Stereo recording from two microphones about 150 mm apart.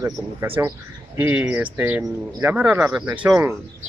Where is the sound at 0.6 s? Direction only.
20° right (ahead or behind).